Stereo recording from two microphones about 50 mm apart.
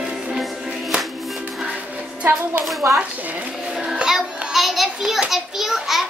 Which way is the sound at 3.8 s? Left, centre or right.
Centre.